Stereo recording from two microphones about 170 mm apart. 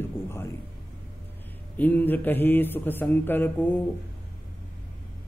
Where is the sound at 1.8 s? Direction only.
10° left (ahead or behind).